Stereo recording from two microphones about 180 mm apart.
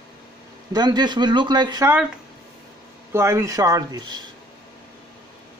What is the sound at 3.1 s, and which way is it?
A man's voice, 15° right (ahead or behind).